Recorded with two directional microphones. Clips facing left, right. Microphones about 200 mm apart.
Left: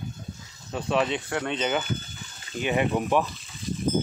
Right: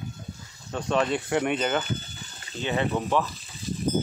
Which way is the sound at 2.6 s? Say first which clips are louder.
Left 2 dB; 15° left (ahead or behind).